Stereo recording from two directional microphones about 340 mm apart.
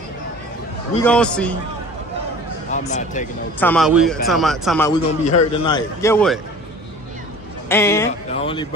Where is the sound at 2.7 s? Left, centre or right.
Left.